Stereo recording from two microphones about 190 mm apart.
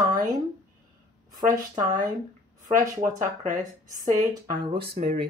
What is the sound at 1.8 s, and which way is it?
Speech, 45° right (ahead or behind).